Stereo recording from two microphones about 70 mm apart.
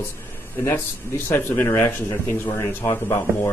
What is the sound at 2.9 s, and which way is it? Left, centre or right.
Speech, left.